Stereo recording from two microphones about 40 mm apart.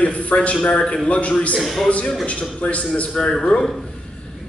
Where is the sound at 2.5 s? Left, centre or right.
Left; by 3.7 s centre.